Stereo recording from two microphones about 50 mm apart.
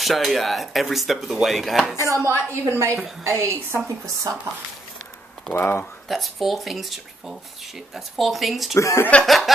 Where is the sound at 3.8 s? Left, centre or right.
Right.